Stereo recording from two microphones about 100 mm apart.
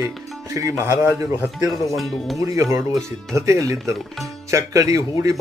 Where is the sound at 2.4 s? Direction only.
30° right (ahead or behind).